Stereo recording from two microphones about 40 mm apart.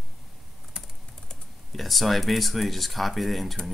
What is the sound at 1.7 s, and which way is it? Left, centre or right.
Speech, centre.